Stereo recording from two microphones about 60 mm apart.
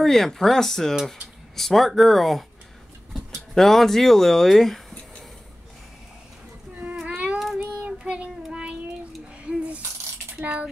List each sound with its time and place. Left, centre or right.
0.0 s speech: centre
3.5 s speech: centre
7.1 s child singing: right
7.3 s child singing: centre
7.8 s child singing: centre
9.4 s coin: centre
10.3 s a sound: right